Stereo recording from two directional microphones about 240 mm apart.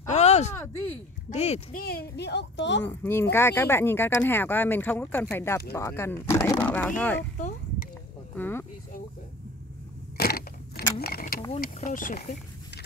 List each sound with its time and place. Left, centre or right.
0.0 s a sound: left
1.3 s a woman's voice: left
3.0 s speech: centre
8.4 s speech: centre
10.1 s a sound: left
11.0 s speech: left